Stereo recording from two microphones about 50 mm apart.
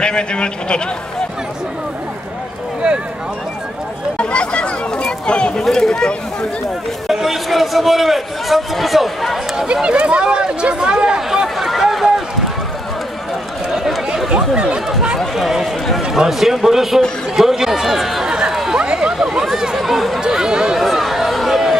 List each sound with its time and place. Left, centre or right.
0.0 s a man's voice: centre
4.2 s speech: left
7.1 s a man's voice: centre
9.8 s a sound: right; by 12.1 s centre
13.7 s chatter: centre
14.3 s speech: centre
15.1 s a man's voice: centre
18.3 s chatter: centre
18.7 s run: centre
19.1 s speech: centre
20.2 s speech: centre
20.8 s a sound: centre